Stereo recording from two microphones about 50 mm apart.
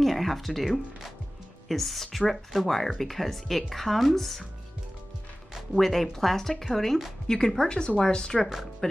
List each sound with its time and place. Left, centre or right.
0.0 s speech: centre
1.7 s speech: centre
5.8 s speech: centre